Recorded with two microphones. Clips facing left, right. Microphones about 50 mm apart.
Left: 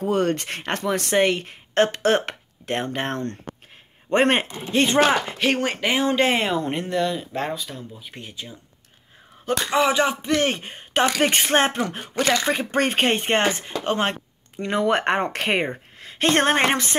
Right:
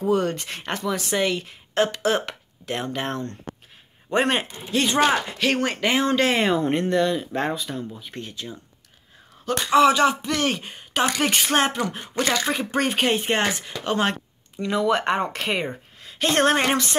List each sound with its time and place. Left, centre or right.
0.0 s speech: left; by 6.4 s centre
6.4 s speech: centre
8.0 s speech: centre
9.8 s speech: centre
10.2 s speech: left
13.4 s a woman's voice: left